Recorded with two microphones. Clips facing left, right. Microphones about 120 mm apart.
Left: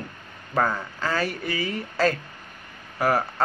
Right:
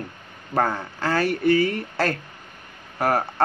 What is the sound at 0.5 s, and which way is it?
Speech, 70° right (ahead or behind).